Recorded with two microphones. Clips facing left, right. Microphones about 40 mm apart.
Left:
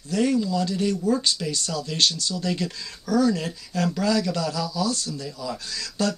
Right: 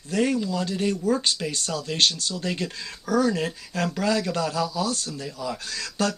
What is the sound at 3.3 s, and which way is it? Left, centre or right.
Speech, right.